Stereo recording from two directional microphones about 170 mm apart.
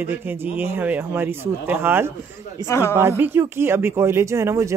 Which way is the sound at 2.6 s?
25° right (ahead or behind).